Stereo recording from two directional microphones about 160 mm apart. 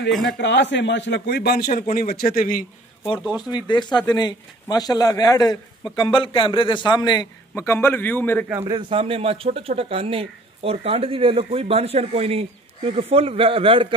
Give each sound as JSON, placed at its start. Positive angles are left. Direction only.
{"t": 0.3, "sound": "a man's voice", "side_deg": 90}
{"t": 3.3, "sound": "speech", "side_deg": -5}
{"t": 3.6, "sound": "speech", "side_deg": 30}
{"t": 7.5, "sound": "a man's voice", "side_deg": 15}
{"t": 8.9, "sound": "speech", "side_deg": -35}